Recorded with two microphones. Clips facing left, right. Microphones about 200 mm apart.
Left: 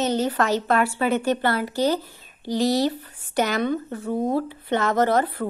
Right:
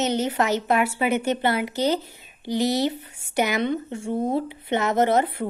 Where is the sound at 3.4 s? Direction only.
15° right (ahead or behind).